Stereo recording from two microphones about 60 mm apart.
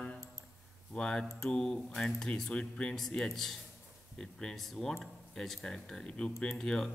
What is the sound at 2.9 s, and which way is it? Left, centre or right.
A man's voice, centre.